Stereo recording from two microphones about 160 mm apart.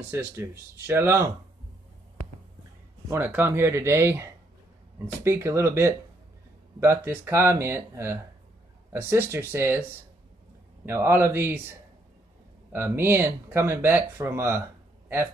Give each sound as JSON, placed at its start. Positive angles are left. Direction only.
{"t": 0.1, "sound": "speech", "side_deg": -10}
{"t": 3.1, "sound": "speech", "side_deg": -10}
{"t": 10.9, "sound": "speech", "side_deg": -15}